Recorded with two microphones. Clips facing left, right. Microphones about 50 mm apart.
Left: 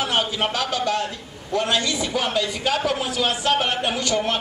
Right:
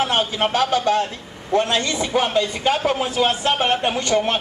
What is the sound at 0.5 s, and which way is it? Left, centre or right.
A man's voice, right.